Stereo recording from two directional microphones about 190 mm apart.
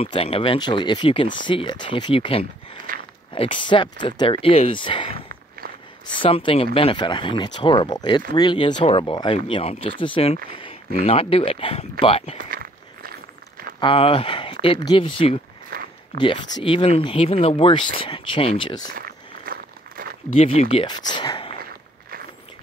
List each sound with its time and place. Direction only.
0.0 s speech: 30° left (ahead or behind)
2.9 s a sound: 45° right (ahead or behind)
3.3 s speech: 25° left (ahead or behind)
5.6 s a sound: 50° right (ahead or behind)
6.0 s speech: 25° left (ahead or behind)
12.4 s walk: 50° right (ahead or behind)
13.7 s speech: 30° left (ahead or behind)
15.7 s a sound: 55° right (ahead or behind)
16.2 s speech: 25° left (ahead or behind)
18.9 s walk: 50° right (ahead or behind)
20.3 s speech: 30° left (ahead or behind)